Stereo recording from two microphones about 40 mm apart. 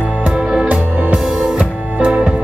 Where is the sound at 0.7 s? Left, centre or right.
Right.